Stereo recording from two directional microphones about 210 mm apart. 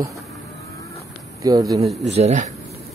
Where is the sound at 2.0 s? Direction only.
30° right (ahead or behind).